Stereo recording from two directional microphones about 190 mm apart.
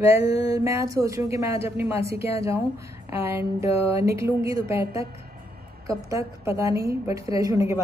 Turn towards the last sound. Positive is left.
turn(degrees=-15)  # may be behind; listen again after turning